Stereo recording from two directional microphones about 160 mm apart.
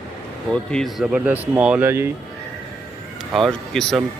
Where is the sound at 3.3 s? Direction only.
5° left (ahead or behind).